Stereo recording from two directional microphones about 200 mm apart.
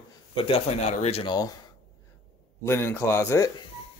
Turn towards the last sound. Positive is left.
turn(degrees=15)  # may be behind; listen again after turning